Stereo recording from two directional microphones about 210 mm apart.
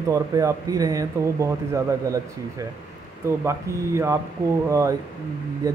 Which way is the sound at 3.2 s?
10° right (ahead or behind).